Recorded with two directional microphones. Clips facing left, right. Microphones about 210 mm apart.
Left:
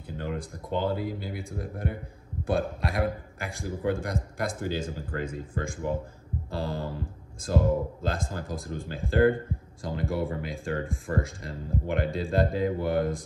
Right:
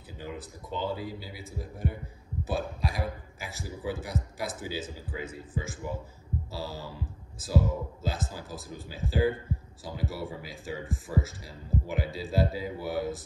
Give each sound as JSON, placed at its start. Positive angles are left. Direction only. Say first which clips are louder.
{"t": 0.2, "sound": "a sound", "louder": "left 5 dB", "side_deg": -5}
{"t": 0.7, "sound": "speech", "louder": "left 5 dB", "side_deg": 55}
{"t": 1.4, "sound": "speech", "louder": "left 2 dB", "side_deg": 0}